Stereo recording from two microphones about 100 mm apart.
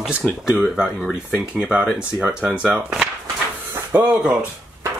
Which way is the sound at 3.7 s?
25° right (ahead or behind).